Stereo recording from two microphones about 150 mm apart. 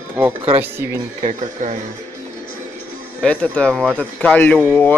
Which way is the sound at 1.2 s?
55° right (ahead or behind).